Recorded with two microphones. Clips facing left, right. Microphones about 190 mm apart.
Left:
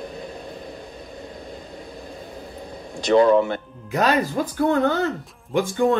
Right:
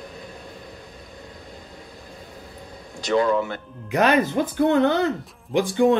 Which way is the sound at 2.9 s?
30° left (ahead or behind).